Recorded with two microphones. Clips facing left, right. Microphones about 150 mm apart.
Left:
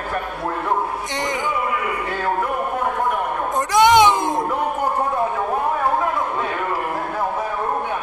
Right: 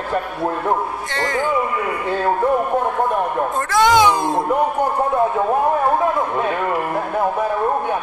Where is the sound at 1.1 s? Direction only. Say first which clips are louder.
Right 5 dB; 15° left (ahead or behind).